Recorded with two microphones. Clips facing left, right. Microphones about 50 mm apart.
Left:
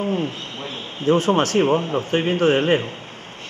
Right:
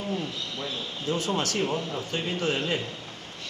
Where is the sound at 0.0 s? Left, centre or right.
Left.